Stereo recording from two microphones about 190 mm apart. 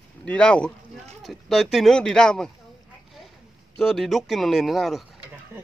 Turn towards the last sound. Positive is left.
turn(degrees=0)  # may be behind; listen again after turning